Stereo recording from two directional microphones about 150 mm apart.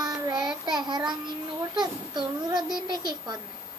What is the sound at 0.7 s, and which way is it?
Child singing, 30° right (ahead or behind).